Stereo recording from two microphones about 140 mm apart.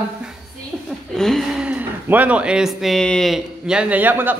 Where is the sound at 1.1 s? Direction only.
Centre (ahead or behind).